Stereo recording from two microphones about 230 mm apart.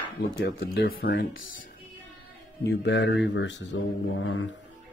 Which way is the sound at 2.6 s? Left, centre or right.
Left.